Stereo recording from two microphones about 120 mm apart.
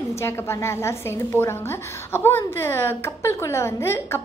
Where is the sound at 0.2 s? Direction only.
20° left (ahead or behind).